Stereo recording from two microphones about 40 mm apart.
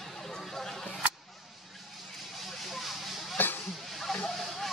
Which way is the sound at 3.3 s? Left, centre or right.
Left.